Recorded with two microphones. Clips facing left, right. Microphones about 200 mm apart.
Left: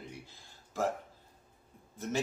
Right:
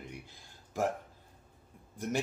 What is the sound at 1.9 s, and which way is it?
Speech, 15° right (ahead or behind).